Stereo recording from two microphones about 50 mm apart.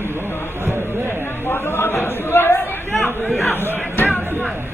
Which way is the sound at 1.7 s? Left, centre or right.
Left.